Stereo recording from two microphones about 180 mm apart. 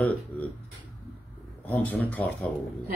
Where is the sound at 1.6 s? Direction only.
10° left (ahead or behind).